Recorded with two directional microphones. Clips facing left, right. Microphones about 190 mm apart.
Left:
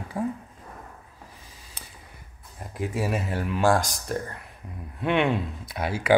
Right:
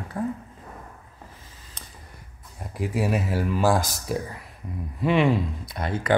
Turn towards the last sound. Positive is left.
turn(degrees=10)  # may be behind; listen again after turning